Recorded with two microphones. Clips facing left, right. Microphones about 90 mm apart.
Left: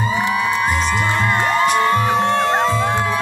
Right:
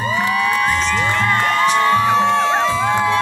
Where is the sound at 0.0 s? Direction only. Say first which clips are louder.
Right 1 dB; 20° left (ahead or behind).